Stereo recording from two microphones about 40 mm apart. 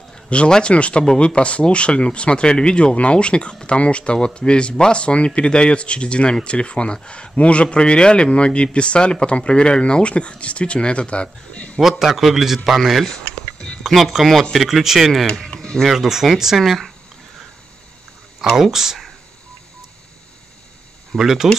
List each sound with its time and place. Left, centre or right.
0.1 s a sound: left
0.5 s speech: left
12.2 s speech: centre
13.1 s a sound: centre
13.8 s speech: centre
15.2 s speech: centre
15.5 s music: centre
15.9 s speech: centre
18.5 s speech: centre
21.2 s speech: centre